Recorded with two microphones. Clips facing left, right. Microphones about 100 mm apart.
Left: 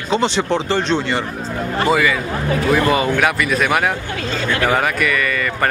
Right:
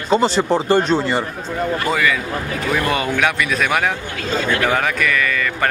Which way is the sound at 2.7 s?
5° left (ahead or behind).